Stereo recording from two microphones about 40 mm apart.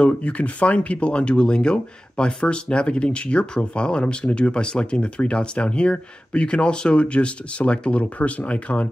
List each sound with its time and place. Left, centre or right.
0.0 s speech: left